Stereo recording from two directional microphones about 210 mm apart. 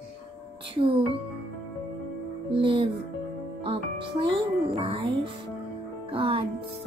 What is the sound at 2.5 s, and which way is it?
Music, 25° right (ahead or behind).